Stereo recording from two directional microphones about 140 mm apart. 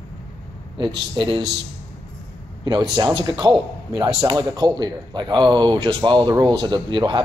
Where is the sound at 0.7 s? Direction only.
35° right (ahead or behind).